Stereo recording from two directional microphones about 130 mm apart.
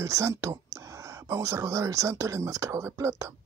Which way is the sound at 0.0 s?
25° right (ahead or behind).